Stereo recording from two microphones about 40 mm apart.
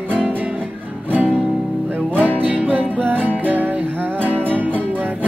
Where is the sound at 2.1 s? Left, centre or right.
Right.